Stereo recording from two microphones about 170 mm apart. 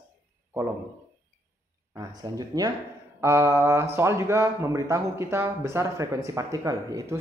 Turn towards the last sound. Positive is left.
turn(degrees=-20)  # may be behind; listen again after turning